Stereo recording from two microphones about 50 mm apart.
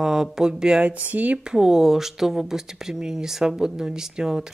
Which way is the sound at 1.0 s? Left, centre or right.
Right.